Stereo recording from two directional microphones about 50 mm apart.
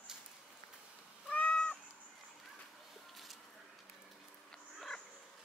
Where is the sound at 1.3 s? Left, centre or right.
Left.